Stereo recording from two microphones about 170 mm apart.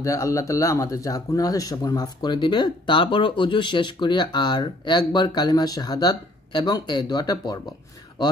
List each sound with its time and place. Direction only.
0.0 s speech: 20° left (ahead or behind)